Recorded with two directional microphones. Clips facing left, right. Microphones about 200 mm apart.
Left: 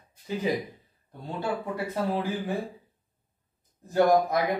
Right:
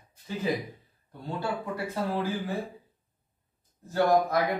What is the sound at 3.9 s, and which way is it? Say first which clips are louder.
Speech: left 2 dB; 20° left (ahead or behind).